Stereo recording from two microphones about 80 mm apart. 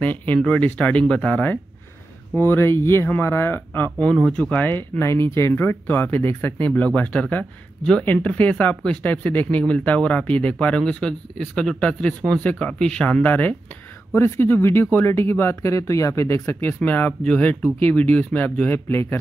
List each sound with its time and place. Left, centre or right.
0.0 s speech: centre
4.6 s speech: left